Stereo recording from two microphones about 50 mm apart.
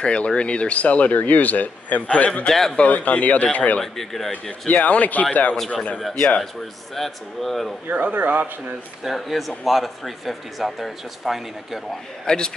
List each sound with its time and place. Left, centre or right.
0.0 s speech: centre
2.4 s a man's voice: centre
2.8 s a man's voice: left
3.8 s speech: centre
4.3 s a man's voice: left
7.0 s speech: centre
7.9 s speech: right
9.0 s speech: centre
12.3 s a man's voice: centre